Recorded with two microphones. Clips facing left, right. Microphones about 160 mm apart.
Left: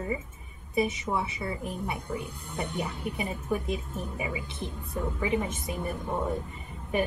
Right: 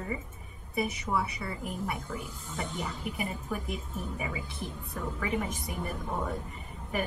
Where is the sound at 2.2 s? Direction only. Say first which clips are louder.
Left 3 dB; 60° left (ahead or behind).